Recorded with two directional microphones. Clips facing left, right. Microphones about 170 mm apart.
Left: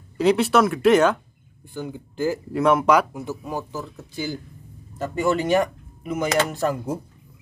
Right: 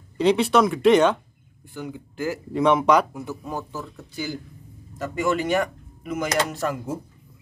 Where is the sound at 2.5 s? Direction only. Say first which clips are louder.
Even; 5° left (ahead or behind).